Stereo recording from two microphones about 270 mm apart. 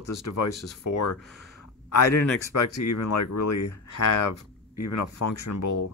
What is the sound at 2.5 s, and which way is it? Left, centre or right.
Speech, left.